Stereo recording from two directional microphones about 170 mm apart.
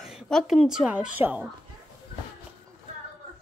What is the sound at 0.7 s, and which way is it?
Speech, 5° right (ahead or behind).